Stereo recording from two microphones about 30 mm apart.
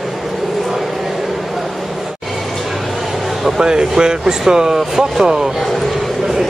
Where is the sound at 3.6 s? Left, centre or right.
Right.